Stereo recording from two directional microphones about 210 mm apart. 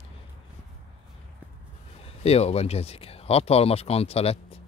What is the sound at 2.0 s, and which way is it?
Speech, 30° left (ahead or behind).